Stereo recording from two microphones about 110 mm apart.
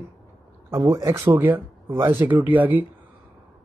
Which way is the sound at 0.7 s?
25° right (ahead or behind).